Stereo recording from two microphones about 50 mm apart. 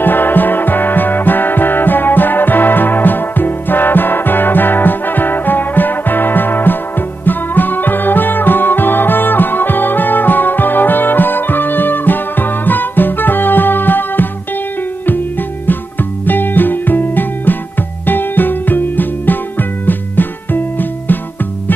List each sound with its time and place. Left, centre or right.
0.0 s music: left
15.6 s music: left